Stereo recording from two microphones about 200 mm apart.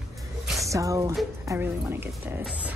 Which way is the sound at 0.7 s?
15° right (ahead or behind).